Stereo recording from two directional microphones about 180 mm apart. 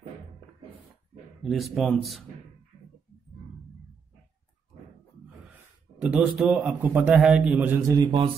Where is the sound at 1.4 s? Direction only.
Centre (ahead or behind).